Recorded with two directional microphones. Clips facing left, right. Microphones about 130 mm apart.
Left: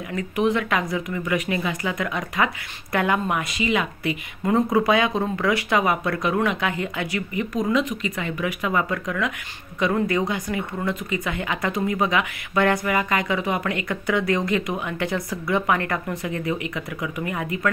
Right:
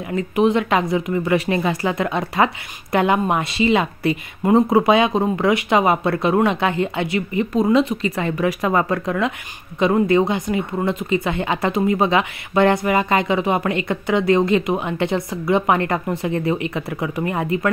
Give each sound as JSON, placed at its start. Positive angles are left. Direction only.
{"t": 0.1, "sound": "speech", "side_deg": -25}